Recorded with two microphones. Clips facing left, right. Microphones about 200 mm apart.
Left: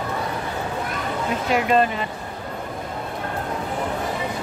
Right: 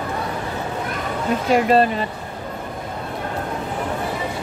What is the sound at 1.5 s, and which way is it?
Speech, 35° right (ahead or behind).